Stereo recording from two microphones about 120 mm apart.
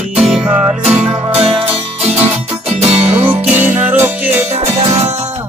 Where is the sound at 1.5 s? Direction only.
60° right (ahead or behind).